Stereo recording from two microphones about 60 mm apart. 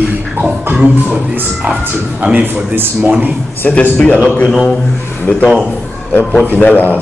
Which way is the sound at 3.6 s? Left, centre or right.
Left.